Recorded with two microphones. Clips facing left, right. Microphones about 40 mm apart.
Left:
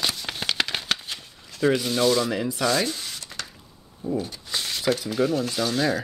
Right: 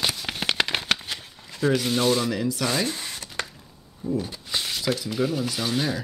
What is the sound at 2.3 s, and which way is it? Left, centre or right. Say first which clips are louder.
Speech: even; centre.